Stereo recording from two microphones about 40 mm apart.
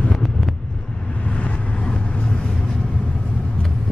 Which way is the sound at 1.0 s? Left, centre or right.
Left.